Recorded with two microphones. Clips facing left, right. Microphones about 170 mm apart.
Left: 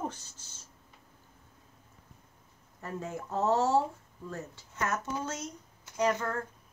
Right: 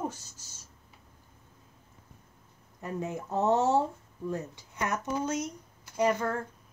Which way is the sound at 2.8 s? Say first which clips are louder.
Right 3 dB; 20° right (ahead or behind).